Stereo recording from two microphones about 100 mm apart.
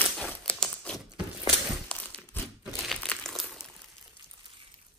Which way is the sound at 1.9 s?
15° left (ahead or behind).